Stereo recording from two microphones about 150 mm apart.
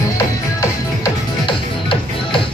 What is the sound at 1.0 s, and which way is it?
Music, 35° left (ahead or behind).